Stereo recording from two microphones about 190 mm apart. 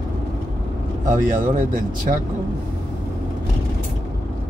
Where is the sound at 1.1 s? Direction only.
45° right (ahead or behind).